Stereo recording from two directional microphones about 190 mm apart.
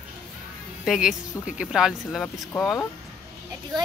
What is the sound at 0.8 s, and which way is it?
Speech, centre (ahead or behind).